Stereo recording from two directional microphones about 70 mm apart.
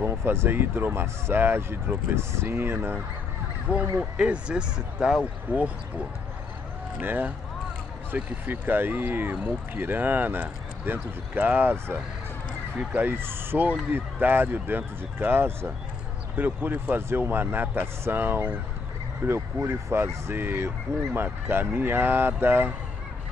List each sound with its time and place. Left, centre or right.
0.0 s speech: right
3.7 s speech: right